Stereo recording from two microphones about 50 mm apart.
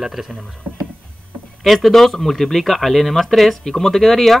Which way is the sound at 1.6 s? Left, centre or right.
Centre.